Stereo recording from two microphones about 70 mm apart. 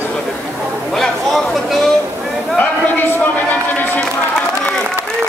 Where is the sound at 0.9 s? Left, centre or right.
Centre.